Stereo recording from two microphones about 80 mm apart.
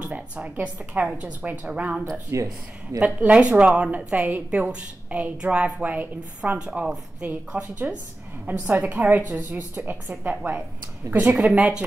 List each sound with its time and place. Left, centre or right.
0.0 s a woman's voice: centre
2.0 s a woman's voice: centre